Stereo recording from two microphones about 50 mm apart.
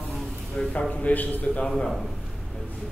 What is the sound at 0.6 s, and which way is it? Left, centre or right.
Speech, centre.